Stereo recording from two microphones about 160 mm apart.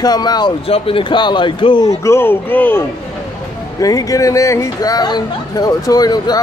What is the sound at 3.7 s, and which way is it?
Speech, 20° left (ahead or behind).